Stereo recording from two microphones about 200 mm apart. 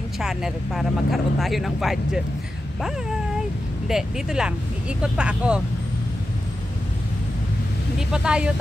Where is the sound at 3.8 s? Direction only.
5° right (ahead or behind).